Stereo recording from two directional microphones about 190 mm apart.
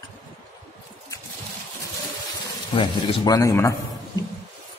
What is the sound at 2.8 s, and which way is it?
Speech, 20° left (ahead or behind).